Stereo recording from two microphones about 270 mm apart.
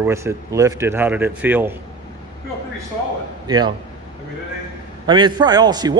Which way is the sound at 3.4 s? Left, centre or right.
Centre.